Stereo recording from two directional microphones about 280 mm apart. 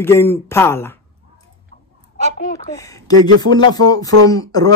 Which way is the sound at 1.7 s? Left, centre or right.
Left.